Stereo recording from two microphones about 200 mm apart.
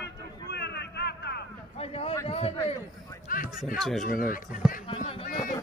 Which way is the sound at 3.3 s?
45° left (ahead or behind).